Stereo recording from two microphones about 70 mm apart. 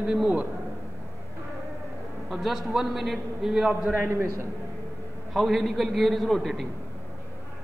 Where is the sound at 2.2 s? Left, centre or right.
Centre.